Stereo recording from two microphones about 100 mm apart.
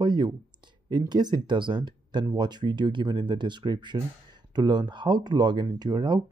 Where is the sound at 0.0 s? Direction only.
50° right (ahead or behind).